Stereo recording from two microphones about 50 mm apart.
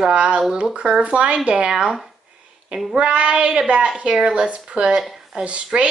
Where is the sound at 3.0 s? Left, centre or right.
Right.